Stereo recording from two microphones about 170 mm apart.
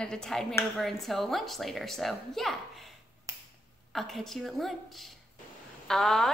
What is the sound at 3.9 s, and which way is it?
A woman's voice, centre (ahead or behind).